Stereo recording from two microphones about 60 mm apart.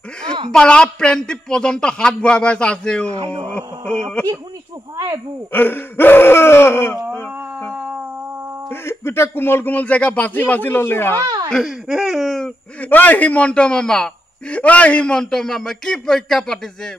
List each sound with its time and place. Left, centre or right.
0.2 s speech: centre
4.9 s speech: right
5.5 s groan: left
8.6 s groan: left
9.7 s speech: left
11.6 s speech: centre
12.8 s speech: left; by 14.1 s centre
14.5 s speech: left
15.1 s speech: centre